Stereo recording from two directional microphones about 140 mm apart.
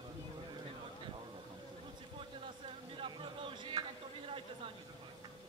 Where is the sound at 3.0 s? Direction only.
35° right (ahead or behind).